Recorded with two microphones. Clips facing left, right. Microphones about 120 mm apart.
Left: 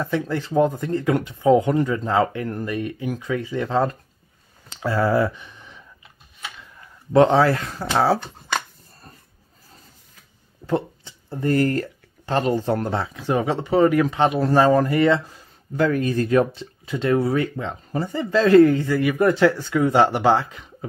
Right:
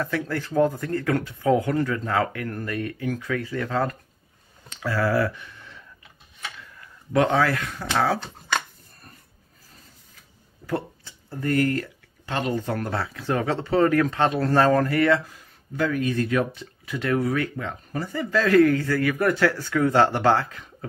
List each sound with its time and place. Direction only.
0.0 s speech: 20° left (ahead or behind)
7.1 s speech: 30° left (ahead or behind)
10.7 s speech: 25° left (ahead or behind)
15.7 s speech: 45° left (ahead or behind); by 20.7 s 20° left (ahead or behind)